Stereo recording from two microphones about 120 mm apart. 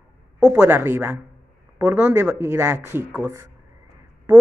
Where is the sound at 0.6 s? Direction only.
20° right (ahead or behind).